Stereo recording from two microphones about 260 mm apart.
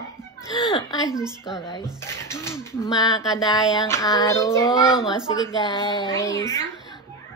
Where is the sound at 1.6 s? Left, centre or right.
Centre.